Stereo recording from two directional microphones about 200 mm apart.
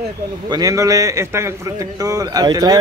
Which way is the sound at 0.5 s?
20° right (ahead or behind).